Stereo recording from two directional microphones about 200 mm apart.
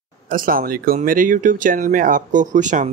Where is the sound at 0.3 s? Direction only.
45° right (ahead or behind).